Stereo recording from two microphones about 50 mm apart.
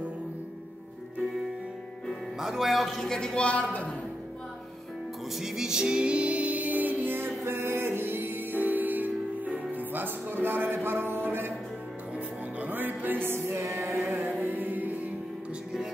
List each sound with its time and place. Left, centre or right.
2.4 s a man's voice: centre; by 3.9 s left
5.3 s music: centre; by 11.5 s right
12.5 s music: right
13.6 s music: right
14.4 s music: right